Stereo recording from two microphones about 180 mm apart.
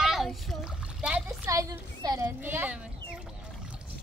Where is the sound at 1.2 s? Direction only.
15° right (ahead or behind).